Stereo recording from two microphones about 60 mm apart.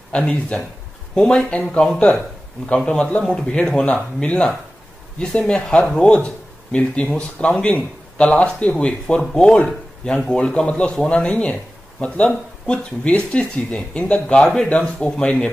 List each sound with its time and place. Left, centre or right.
0.1 s a man's voice: centre